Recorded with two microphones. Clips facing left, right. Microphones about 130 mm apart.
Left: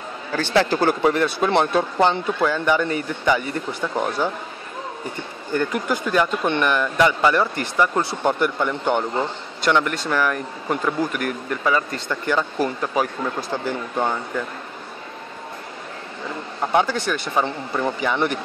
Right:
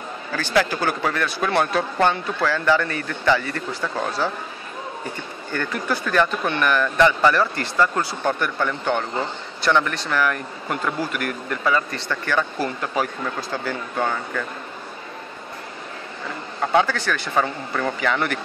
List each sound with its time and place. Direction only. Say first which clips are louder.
0.3 s speech: left 2 dB; 25° left (ahead or behind)
5.5 s speech: left 3 dB; 15° left (ahead or behind)
16.7 s speech: even; 15° left (ahead or behind)